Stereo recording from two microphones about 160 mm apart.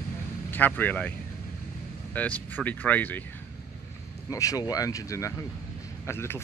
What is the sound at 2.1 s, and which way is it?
Speech, 10° left (ahead or behind).